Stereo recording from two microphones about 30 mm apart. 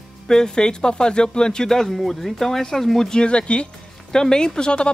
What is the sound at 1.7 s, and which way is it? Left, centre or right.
Speech, centre.